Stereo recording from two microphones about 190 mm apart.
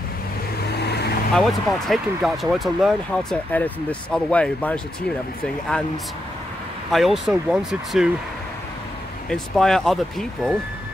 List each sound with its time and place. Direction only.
0.7 s vehicle: 60° left (ahead or behind)
1.3 s speech: centre (ahead or behind)
6.9 s speech: centre (ahead or behind)
9.3 s speech: 5° left (ahead or behind)